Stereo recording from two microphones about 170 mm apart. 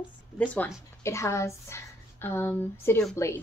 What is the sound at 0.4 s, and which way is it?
Speech, 15° left (ahead or behind).